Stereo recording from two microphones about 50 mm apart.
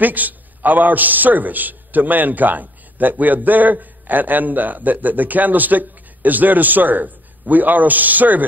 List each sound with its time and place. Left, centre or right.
0.0 s a man's voice: right